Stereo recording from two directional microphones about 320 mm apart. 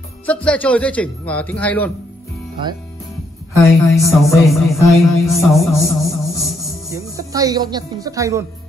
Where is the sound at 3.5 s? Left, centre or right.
Centre.